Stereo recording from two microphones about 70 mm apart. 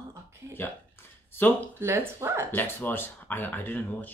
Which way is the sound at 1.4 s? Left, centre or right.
Left.